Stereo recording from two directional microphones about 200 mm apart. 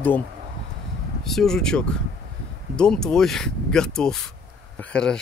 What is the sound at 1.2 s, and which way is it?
Speech, centre (ahead or behind).